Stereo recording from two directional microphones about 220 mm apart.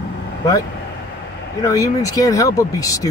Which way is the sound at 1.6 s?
15° left (ahead or behind).